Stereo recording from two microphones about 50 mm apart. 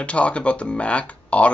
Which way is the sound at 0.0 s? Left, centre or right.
Left.